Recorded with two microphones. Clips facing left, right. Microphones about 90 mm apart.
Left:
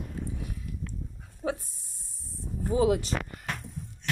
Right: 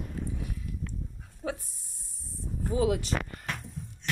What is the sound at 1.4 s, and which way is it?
Speech, 30° left (ahead or behind).